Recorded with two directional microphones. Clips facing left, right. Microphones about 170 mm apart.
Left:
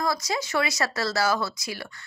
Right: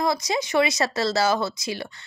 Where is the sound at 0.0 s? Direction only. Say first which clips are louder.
Right 3 dB; 20° right (ahead or behind).